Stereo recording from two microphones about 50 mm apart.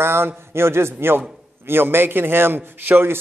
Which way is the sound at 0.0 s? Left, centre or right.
Right.